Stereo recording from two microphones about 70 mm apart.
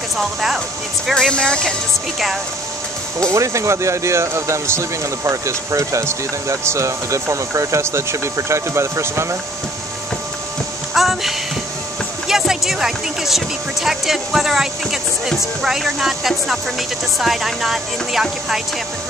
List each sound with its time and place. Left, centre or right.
1.1 s speech: centre
3.3 s speech: right
10.9 s music: centre
12.3 s speech: centre